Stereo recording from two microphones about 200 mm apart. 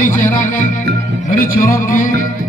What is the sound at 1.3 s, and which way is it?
Music, 45° left (ahead or behind).